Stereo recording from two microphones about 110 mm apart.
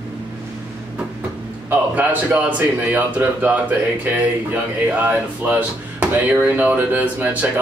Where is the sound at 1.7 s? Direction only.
15° right (ahead or behind).